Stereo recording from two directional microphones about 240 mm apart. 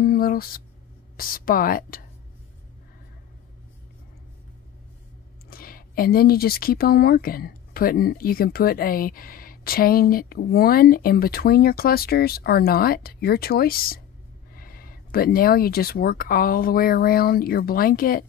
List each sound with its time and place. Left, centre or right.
0.0 s a sound: left
1.1 s speech: left
5.5 s speech: left